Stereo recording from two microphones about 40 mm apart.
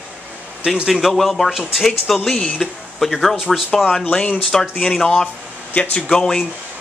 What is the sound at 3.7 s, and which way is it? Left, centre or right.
A man's voice, centre.